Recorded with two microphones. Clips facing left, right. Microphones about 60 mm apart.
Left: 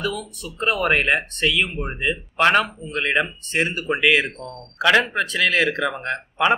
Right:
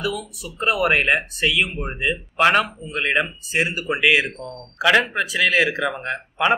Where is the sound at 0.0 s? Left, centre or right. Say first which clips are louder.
Even; centre.